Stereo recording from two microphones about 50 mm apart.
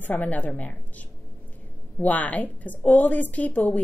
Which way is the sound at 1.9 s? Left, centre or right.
Left.